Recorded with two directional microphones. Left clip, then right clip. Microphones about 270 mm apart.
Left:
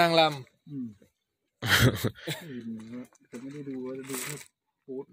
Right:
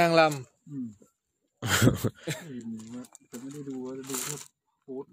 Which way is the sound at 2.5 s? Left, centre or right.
Centre.